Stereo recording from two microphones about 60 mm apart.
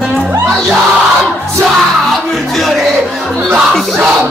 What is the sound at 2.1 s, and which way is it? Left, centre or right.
Music, centre.